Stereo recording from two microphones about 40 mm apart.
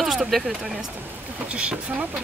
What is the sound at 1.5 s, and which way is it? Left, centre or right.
Speech, right.